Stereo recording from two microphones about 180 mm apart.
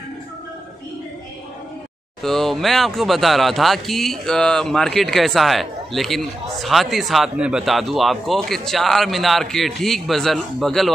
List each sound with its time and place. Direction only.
2.2 s speech: centre (ahead or behind)